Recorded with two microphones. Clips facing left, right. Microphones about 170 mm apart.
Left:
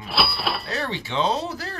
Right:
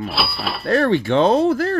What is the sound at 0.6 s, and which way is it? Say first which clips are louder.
Speech: right 12 dB; 55° right (ahead or behind).